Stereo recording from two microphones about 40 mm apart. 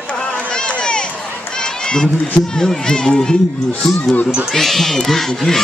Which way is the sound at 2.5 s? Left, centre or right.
Centre.